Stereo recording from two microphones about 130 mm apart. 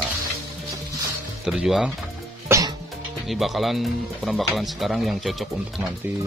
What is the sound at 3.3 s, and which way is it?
Speech, centre (ahead or behind).